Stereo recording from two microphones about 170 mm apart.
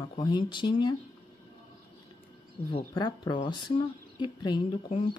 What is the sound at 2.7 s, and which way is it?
Speech, 25° left (ahead or behind).